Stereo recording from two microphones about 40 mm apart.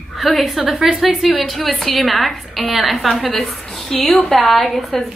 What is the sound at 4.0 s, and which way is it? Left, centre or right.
Speech, left.